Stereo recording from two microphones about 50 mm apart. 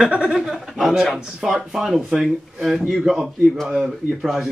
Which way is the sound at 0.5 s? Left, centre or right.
Centre.